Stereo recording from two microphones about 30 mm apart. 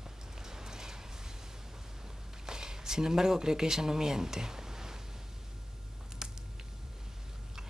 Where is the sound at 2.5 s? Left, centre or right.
Right.